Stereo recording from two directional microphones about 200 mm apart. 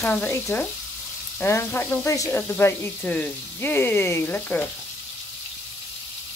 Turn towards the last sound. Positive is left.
turn(degrees=10)  # may be behind; listen again after turning